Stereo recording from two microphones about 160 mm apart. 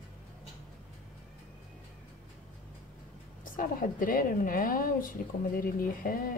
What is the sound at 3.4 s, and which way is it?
A woman's voice, 60° left (ahead or behind).